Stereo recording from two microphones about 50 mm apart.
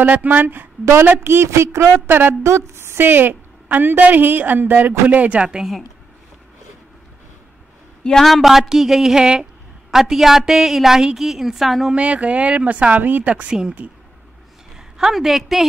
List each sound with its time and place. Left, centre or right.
0.0 s a woman's voice: right
1.2 s speech: right
1.5 s speech: right
2.0 s a woman's voice: right
2.4 s a woman's voice: right
5.6 s a woman's voice: centre
8.2 s a woman's voice: centre
11.9 s a woman's voice: right
13.5 s a woman's voice: centre
15.1 s a woman's voice: centre